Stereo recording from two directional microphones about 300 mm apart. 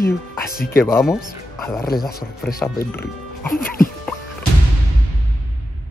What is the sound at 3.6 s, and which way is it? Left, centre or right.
Music, left.